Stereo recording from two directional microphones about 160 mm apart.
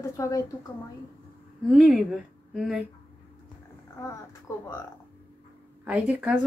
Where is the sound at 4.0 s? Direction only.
15° left (ahead or behind).